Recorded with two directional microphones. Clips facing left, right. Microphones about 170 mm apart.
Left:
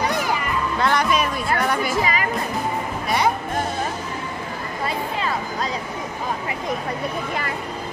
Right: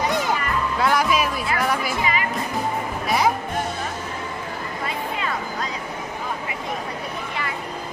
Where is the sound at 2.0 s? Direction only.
40° left (ahead or behind).